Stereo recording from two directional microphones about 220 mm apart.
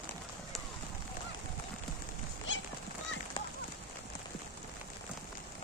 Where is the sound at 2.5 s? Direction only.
60° left (ahead or behind).